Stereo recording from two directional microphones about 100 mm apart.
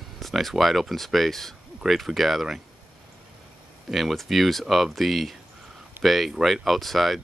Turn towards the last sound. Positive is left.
turn(degrees=0)  # may be behind; listen again after turning